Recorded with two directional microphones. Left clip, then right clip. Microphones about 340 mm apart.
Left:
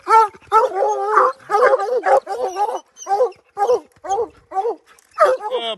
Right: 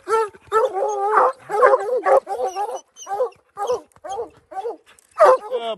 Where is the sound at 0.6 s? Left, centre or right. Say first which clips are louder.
Left 2 dB; left.